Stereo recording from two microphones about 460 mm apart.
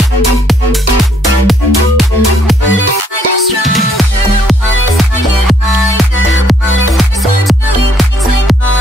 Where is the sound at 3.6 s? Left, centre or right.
Centre.